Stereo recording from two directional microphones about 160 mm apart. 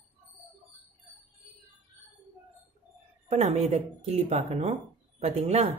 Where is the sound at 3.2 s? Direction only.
40° right (ahead or behind).